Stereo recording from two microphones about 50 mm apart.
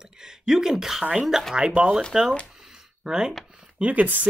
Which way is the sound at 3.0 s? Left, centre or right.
Centre.